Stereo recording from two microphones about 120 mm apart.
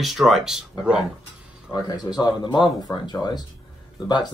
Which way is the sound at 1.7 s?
35° left (ahead or behind).